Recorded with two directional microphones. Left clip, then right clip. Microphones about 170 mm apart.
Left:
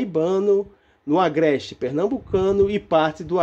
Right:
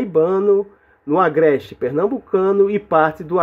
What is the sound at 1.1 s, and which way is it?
Speech, 15° left (ahead or behind).